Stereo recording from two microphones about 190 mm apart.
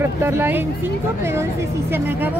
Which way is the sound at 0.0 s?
10° right (ahead or behind).